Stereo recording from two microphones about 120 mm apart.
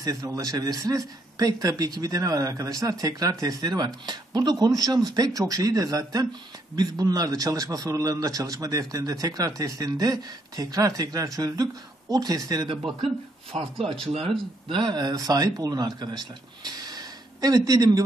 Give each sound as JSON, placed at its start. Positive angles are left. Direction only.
{"t": 0.0, "sound": "a man's voice", "side_deg": -30}
{"t": 13.5, "sound": "speech", "side_deg": -60}
{"t": 14.1, "sound": "a man's voice", "side_deg": -45}